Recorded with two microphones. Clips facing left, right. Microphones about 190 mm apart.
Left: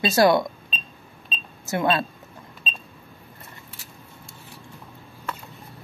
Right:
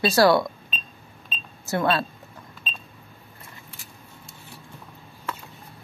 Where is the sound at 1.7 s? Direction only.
20° left (ahead or behind).